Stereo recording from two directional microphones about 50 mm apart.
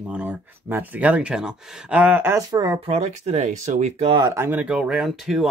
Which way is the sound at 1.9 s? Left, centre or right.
Right.